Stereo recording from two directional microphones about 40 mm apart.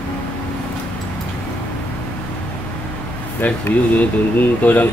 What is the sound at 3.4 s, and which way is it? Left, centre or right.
Speech, left.